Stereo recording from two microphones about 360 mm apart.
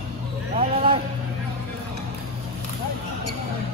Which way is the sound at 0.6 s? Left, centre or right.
Centre.